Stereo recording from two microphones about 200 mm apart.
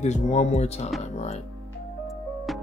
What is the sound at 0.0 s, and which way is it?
Speech, 35° left (ahead or behind).